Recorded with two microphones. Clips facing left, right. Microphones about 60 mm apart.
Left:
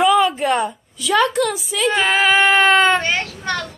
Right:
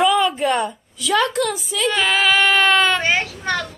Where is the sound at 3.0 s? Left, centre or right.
Centre.